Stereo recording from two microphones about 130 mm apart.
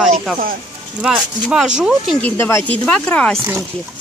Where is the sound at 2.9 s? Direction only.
10° left (ahead or behind).